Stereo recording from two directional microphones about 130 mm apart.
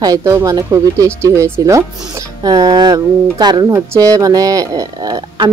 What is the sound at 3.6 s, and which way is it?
Speech, 20° right (ahead or behind).